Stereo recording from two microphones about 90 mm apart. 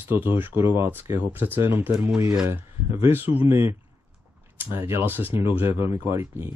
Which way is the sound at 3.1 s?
20° right (ahead or behind).